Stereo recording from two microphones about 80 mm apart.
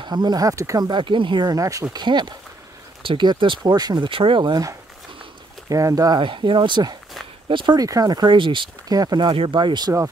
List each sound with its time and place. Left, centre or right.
0.0 s speech: right
0.8 s speech: right
1.5 s speech: right
2.0 s speech: right
3.0 s speech: right
5.7 s speech: right
6.1 s speech: right
7.4 s speech: right
7.7 s speech: right
8.8 s speech: right